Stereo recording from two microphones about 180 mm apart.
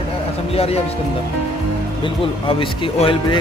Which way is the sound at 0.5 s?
35° left (ahead or behind).